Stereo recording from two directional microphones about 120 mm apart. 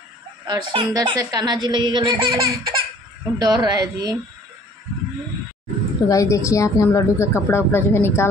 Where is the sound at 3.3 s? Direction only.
35° right (ahead or behind).